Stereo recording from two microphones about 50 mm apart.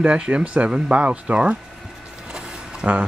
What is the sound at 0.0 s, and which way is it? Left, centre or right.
Speech, right.